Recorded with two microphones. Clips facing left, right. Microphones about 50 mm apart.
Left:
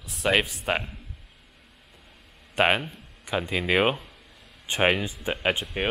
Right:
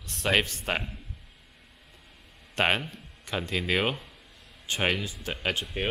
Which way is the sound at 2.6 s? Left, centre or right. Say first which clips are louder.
Left 4 dB; centre.